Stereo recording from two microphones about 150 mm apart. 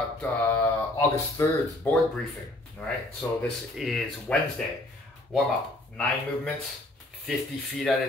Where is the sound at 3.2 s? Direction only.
15° left (ahead or behind).